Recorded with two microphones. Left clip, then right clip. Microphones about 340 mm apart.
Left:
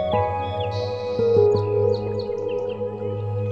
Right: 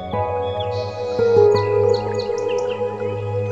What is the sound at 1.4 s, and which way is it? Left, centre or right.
Music, right.